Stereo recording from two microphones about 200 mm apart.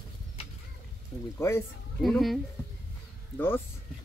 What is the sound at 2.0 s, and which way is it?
Speech, centre (ahead or behind).